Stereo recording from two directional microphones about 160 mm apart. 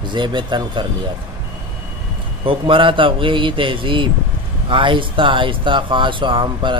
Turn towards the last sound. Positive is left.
turn(degrees=-30)  # may be behind; listen again after turning